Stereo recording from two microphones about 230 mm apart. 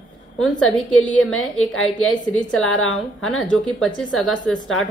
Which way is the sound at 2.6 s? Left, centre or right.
Left.